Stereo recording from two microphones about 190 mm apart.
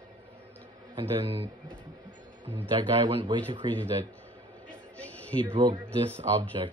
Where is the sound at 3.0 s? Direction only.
25° right (ahead or behind).